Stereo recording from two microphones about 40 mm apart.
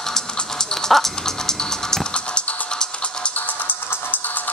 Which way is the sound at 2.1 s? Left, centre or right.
Left.